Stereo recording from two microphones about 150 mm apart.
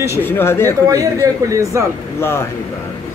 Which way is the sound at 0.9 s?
20° right (ahead or behind).